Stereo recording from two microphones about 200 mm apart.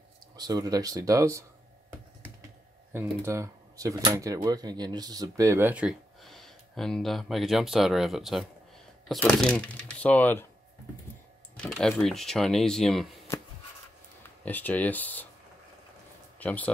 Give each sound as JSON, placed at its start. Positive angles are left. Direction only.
{"t": 0.4, "sound": "speech", "side_deg": -20}
{"t": 2.9, "sound": "speech", "side_deg": -10}
{"t": 11.5, "sound": "speech", "side_deg": 5}
{"t": 14.2, "sound": "speech", "side_deg": 10}
{"t": 16.3, "sound": "speech", "side_deg": 10}